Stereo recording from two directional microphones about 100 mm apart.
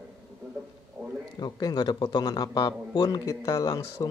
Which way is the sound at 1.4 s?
45° left (ahead or behind).